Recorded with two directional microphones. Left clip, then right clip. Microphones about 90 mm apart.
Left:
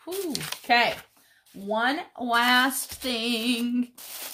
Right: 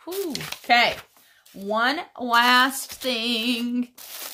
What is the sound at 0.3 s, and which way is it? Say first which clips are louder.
Speech: right 1 dB; 15° left (ahead or behind).